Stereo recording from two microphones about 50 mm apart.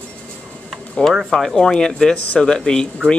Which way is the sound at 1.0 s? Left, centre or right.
Centre.